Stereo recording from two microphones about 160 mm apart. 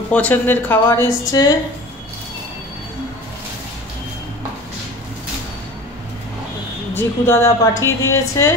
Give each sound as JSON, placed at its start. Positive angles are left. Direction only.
{"t": 0.1, "sound": "a woman's voice", "side_deg": 10}
{"t": 7.0, "sound": "a woman's voice", "side_deg": 15}